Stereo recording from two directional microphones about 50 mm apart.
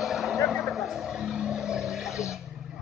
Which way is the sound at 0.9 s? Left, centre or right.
Centre.